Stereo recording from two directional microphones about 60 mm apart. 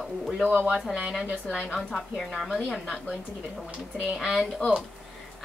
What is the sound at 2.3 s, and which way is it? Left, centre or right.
Speech, centre.